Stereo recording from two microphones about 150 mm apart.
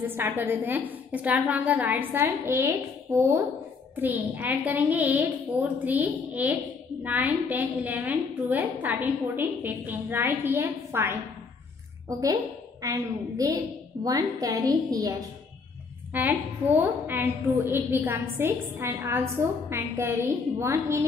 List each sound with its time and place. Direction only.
0.0 s a woman's voice: 15° right (ahead or behind)
16.1 s a woman's voice: 10° right (ahead or behind)